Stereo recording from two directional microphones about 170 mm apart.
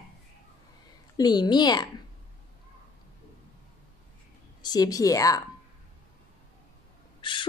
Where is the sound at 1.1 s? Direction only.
25° left (ahead or behind).